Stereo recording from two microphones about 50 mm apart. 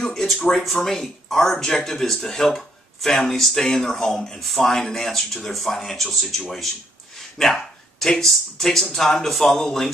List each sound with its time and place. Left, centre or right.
0.0 s speech: centre